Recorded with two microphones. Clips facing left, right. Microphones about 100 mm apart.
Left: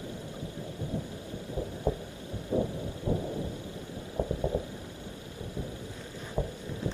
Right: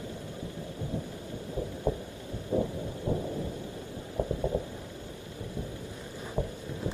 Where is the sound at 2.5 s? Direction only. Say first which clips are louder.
Even; 20° right (ahead or behind).